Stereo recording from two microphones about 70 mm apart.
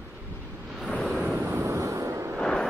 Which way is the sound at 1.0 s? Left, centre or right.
Centre.